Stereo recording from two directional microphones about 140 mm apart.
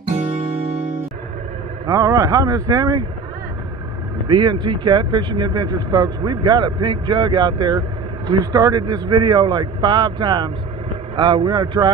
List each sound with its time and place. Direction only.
1.9 s speech: 25° right (ahead or behind)
4.3 s a man's voice: 35° right (ahead or behind)